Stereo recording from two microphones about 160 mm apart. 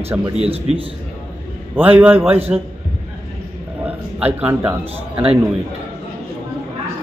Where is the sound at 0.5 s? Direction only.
35° right (ahead or behind).